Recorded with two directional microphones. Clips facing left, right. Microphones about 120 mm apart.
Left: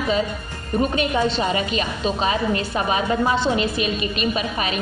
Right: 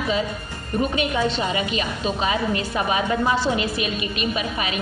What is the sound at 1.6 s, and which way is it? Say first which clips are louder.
A woman's voice: left 1 dB; 40° left (ahead or behind).